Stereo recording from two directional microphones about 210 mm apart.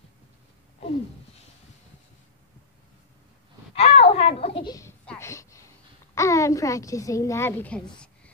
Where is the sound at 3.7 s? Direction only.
30° left (ahead or behind).